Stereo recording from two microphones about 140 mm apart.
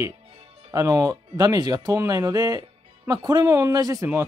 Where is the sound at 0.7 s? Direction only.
25° right (ahead or behind).